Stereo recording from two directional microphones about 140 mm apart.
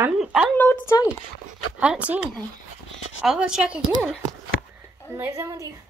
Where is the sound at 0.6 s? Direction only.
15° left (ahead or behind).